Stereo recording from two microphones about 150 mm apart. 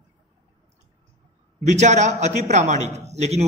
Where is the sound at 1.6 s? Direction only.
50° right (ahead or behind).